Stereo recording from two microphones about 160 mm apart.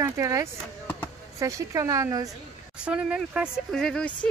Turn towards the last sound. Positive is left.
turn(degrees=5)  # may be behind; listen again after turning